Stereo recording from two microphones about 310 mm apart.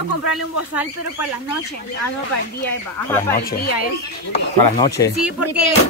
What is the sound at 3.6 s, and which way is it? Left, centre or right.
Speech, left.